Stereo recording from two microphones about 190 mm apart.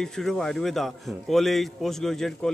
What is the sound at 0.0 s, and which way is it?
A man's voice, 5° left (ahead or behind).